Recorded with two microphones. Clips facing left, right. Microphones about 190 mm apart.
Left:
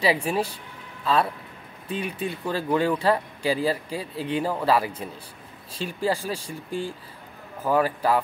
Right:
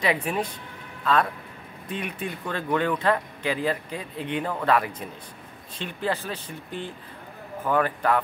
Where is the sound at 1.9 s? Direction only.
30° left (ahead or behind).